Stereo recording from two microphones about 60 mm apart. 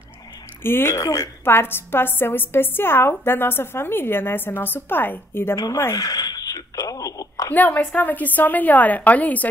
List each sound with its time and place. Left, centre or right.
0.7 s a woman's voice: left
0.9 s a woman's voice: left
1.4 s a woman's voice: left
5.9 s a sound: left
7.5 s a woman's voice: left